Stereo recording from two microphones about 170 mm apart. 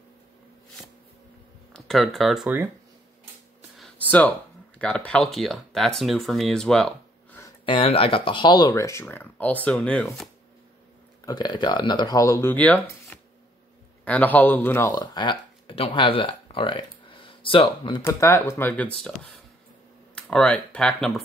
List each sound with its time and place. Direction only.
1.7 s speech: centre (ahead or behind)
3.7 s speech: 5° left (ahead or behind)
7.6 s speech: 30° left (ahead or behind); by 10.0 s 5° left (ahead or behind)
11.2 s speech: 25° left (ahead or behind)
18.0 s speech: 15° left (ahead or behind)
20.2 s speech: 5° left (ahead or behind)